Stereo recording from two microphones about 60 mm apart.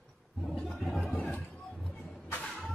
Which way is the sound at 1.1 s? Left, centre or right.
Left.